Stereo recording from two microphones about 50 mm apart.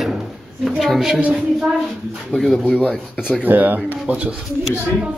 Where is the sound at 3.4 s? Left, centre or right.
Right.